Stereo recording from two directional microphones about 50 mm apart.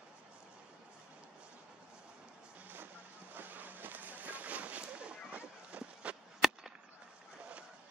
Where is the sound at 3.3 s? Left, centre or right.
Right.